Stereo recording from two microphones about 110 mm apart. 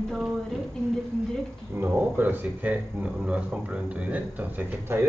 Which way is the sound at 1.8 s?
15° right (ahead or behind).